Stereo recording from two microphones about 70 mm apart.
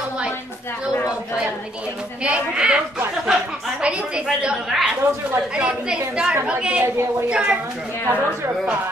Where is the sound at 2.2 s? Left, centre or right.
Centre.